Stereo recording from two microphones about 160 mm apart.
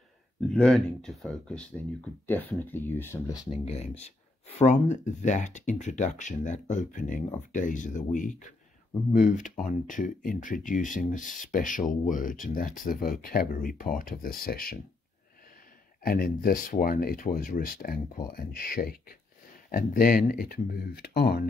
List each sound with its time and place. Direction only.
0.5 s speech: 5° left (ahead or behind)
3.4 s speech: 40° left (ahead or behind); by 14.8 s 65° left (ahead or behind)
16.0 s speech: 65° left (ahead or behind); by 21.5 s 85° left